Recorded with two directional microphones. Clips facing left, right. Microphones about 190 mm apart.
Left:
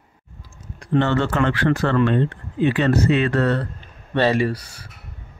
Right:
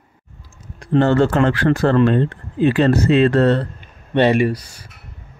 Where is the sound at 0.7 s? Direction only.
40° right (ahead or behind).